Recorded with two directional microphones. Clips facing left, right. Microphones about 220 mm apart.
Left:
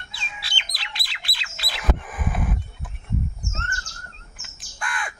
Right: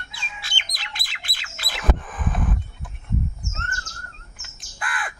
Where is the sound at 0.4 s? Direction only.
45° right (ahead or behind).